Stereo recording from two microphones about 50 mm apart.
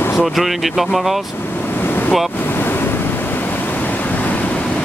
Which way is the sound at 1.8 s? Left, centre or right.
Left.